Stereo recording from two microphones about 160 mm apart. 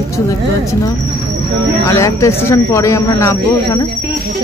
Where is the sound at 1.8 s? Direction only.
20° left (ahead or behind).